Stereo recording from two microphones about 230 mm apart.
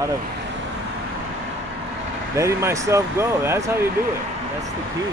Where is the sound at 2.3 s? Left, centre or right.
Centre.